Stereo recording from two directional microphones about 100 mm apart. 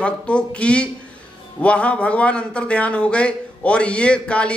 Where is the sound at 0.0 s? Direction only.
10° left (ahead or behind).